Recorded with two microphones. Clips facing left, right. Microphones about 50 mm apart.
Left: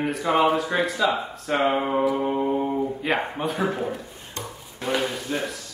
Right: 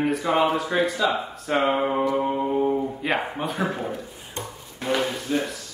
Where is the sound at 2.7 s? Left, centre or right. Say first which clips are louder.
Left 1 dB; centre.